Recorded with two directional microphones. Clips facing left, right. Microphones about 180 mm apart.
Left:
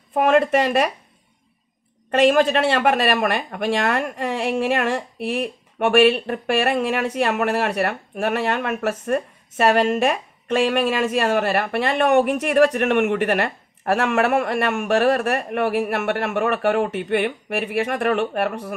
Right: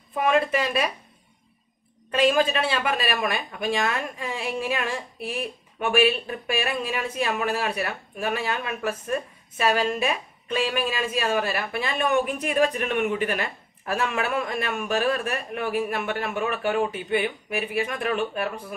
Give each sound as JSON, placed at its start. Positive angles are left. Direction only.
{"t": 0.1, "sound": "speech", "side_deg": 70}
{"t": 2.0, "sound": "speech", "side_deg": 70}